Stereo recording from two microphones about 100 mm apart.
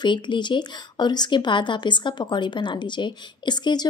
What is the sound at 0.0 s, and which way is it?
Speech, 50° left (ahead or behind).